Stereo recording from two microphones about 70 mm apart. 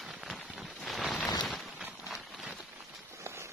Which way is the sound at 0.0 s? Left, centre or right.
Centre.